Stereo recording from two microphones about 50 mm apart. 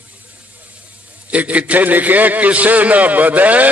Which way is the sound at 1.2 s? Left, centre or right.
Right.